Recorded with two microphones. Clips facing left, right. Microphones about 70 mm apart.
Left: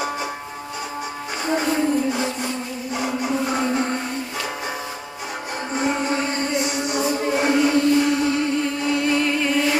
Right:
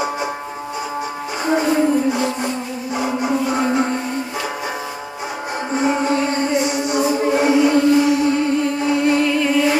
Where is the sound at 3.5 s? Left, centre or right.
Centre.